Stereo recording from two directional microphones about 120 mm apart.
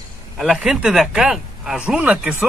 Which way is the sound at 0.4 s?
5° right (ahead or behind).